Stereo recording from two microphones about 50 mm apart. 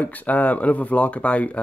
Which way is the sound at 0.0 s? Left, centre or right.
Left.